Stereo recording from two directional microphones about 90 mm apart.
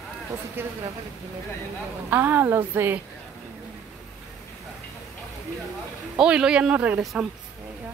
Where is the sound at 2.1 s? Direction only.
20° right (ahead or behind).